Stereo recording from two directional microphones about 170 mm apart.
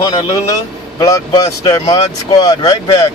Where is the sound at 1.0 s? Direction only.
20° left (ahead or behind).